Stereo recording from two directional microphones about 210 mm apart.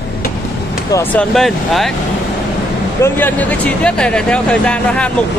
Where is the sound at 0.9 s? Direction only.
15° left (ahead or behind).